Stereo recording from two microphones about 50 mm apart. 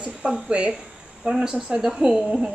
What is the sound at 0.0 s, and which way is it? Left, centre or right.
A woman's voice, right.